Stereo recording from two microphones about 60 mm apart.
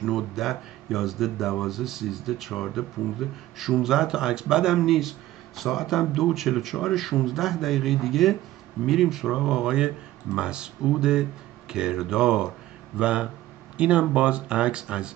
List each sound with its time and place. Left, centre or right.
0.0 s a man's voice: centre